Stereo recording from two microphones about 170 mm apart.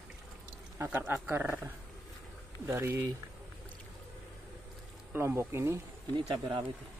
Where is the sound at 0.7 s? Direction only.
10° right (ahead or behind).